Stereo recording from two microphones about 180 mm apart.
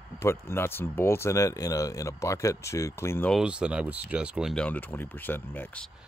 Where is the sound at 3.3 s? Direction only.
5° right (ahead or behind).